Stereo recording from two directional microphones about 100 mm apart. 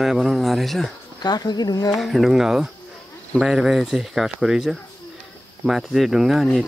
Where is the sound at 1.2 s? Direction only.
45° left (ahead or behind).